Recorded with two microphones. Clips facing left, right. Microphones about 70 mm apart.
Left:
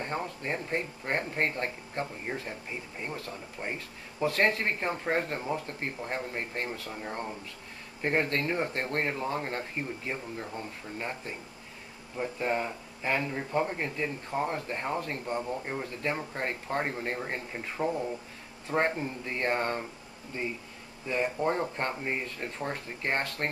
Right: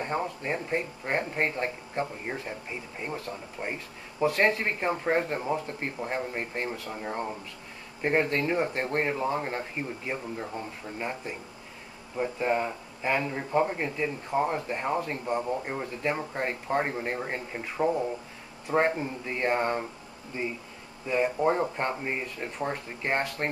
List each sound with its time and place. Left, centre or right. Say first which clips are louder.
0.0 s speech: right 3 dB; centre
21.1 s speech: right 4 dB; centre